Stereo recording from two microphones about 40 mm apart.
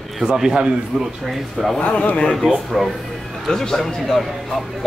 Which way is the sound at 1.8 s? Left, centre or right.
Left.